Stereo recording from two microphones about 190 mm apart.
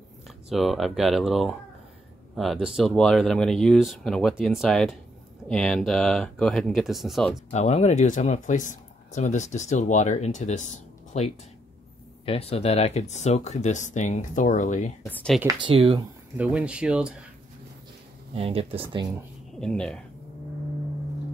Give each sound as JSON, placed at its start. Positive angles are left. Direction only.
{"t": 0.5, "sound": "speech", "side_deg": 0}
{"t": 7.5, "sound": "speech", "side_deg": 35}
{"t": 15.0, "sound": "speech", "side_deg": 5}
{"t": 15.4, "sound": "speech", "side_deg": -25}
{"t": 16.3, "sound": "speech", "side_deg": -5}
{"t": 18.3, "sound": "speech", "side_deg": -30}
{"t": 19.5, "sound": "speech", "side_deg": 5}